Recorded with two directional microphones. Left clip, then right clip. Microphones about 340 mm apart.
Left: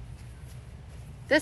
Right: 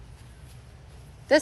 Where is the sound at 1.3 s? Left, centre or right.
Centre.